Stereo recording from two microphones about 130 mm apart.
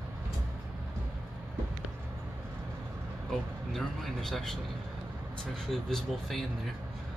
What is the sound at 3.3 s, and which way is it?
Speech, centre (ahead or behind).